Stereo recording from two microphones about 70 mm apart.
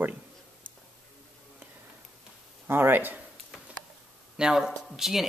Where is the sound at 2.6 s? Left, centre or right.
Right.